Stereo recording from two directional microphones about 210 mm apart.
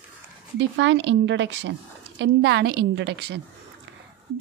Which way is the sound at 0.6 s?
60° right (ahead or behind).